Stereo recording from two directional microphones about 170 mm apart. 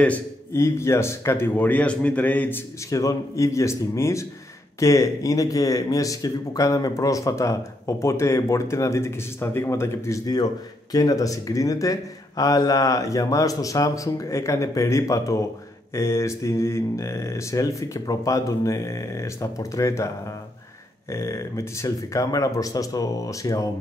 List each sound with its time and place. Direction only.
0.0 s a man's voice: 10° left (ahead or behind)
21.1 s speech: 15° left (ahead or behind)